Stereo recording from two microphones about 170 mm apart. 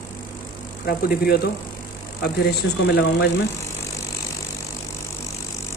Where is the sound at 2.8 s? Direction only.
75° left (ahead or behind).